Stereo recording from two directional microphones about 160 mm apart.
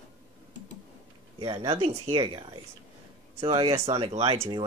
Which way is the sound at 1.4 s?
35° right (ahead or behind).